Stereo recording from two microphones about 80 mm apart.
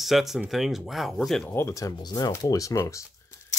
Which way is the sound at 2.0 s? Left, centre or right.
Left.